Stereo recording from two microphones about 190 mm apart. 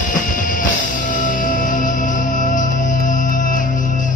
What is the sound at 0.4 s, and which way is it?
Music, 45° left (ahead or behind).